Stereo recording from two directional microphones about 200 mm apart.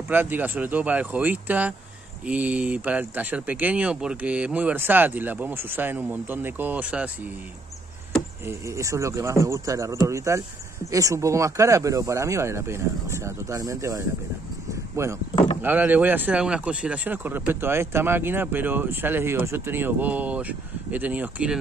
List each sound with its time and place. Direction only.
0.1 s speech: 10° right (ahead or behind)
8.5 s speech: 15° right (ahead or behind)